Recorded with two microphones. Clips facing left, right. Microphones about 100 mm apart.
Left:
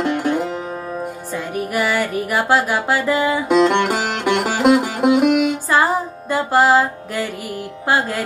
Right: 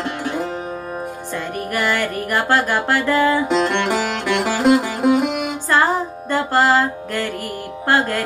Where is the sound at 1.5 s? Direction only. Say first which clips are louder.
Left 2 dB; 5° left (ahead or behind).